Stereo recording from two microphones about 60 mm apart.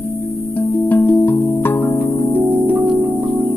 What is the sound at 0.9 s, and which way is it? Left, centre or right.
Music, left.